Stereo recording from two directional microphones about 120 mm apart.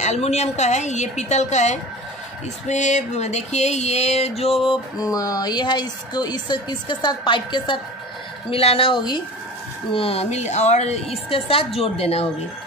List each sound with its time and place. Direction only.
0.0 s a woman's voice: 70° left (ahead or behind); by 4.7 s 55° left (ahead or behind)
4.9 s a woman's voice: 30° left (ahead or behind)
9.9 s a woman's voice: 55° left (ahead or behind)